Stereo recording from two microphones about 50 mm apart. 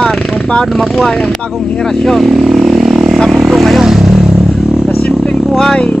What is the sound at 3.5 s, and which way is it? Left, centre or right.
Vehicle, centre.